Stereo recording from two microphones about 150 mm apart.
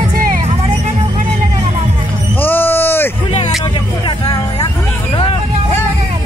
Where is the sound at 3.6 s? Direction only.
30° left (ahead or behind).